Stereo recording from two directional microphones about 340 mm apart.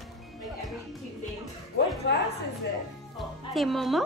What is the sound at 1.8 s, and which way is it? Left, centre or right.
Speech, left.